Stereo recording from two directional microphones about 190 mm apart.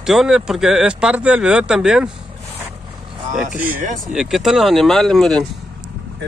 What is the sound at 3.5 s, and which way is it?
Speech, 10° right (ahead or behind).